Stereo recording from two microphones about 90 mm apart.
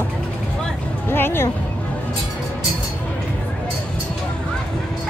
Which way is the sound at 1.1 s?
25° left (ahead or behind).